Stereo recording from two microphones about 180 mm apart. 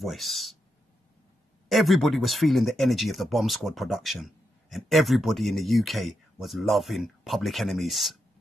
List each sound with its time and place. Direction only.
0.0 s speech: centre (ahead or behind)
1.7 s speech: centre (ahead or behind)